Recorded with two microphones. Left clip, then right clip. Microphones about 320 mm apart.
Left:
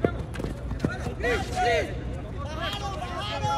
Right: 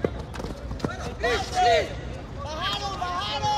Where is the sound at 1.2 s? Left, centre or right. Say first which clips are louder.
Right 3 dB; centre.